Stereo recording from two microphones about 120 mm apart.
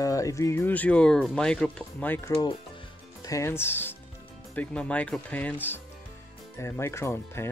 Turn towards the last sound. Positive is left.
turn(degrees=20)  # may be behind; listen again after turning